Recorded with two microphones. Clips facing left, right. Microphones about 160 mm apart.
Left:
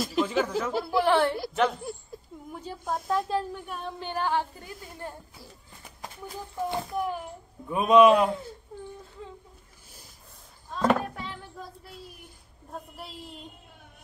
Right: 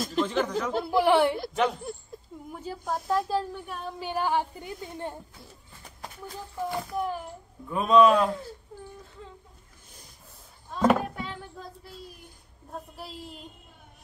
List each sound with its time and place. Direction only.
0.0 s speech: 5° left (ahead or behind)
0.8 s a woman's voice: 15° right (ahead or behind)
1.4 s speech: centre (ahead or behind); by 4.7 s 15° right (ahead or behind)
6.9 s speech: centre (ahead or behind)
7.7 s a man's voice: 20° left (ahead or behind)
10.7 s chop: 5° right (ahead or behind)
12.7 s speech: centre (ahead or behind)